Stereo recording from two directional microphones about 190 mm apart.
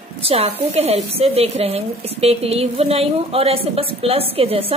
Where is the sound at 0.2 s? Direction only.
30° right (ahead or behind).